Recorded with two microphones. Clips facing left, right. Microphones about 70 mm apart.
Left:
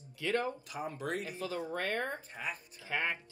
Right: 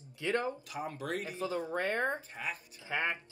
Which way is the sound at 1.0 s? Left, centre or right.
Right.